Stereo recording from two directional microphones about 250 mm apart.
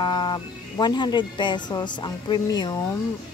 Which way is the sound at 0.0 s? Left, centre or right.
Centre.